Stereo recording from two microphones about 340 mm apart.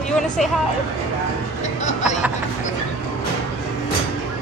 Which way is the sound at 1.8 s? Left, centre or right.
Left.